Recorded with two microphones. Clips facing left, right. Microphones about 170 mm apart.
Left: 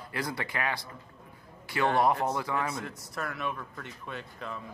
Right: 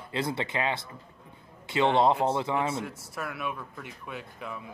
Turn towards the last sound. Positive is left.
turn(degrees=-10)  # may be behind; listen again after turning